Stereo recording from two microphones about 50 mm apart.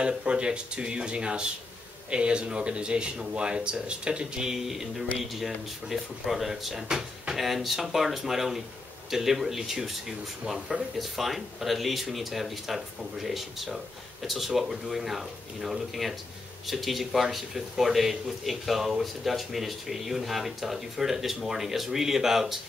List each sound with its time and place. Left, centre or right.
0.0 s speech: right